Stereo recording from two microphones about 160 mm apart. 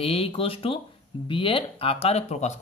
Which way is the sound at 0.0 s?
35° left (ahead or behind).